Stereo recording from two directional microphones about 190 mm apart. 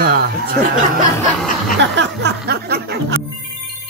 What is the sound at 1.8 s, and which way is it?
Speech, 65° right (ahead or behind).